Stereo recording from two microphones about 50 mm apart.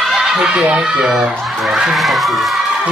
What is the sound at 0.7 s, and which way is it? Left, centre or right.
Speech, centre.